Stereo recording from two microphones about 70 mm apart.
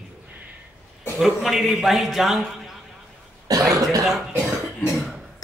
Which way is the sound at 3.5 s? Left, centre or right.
Right.